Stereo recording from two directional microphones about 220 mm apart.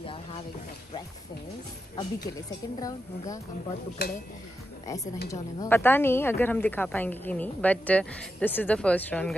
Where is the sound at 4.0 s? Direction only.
50° left (ahead or behind).